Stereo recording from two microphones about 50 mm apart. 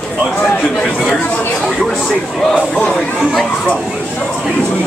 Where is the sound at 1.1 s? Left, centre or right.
Left.